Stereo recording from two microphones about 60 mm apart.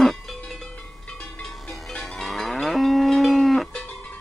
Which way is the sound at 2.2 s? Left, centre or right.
Centre.